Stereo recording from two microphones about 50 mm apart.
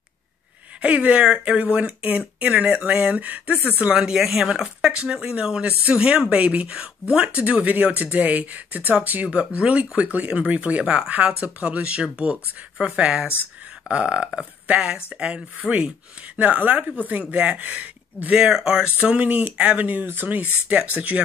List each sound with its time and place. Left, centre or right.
0.8 s speech: right
3.2 s speech: right
3.9 s speech: centre
7.4 s speech: right
15.6 s speech: left
16.3 s speech: right
18.3 s speech: centre
19.0 s speech: right
19.9 s speech: right